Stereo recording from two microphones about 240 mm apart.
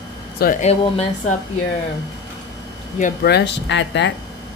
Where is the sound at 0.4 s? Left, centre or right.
Left.